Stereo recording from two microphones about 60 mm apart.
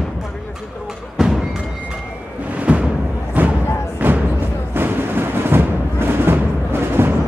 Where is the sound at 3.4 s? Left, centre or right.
Right.